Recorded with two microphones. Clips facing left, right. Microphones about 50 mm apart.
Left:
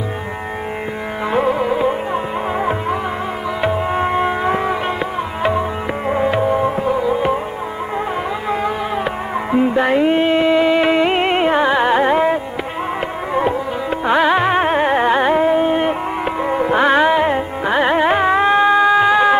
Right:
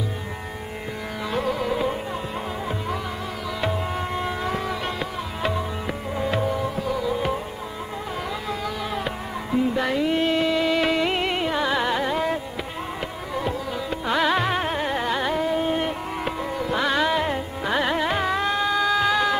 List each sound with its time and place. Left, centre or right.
1.3 s music: left
3.6 s music: left
8.5 s music: left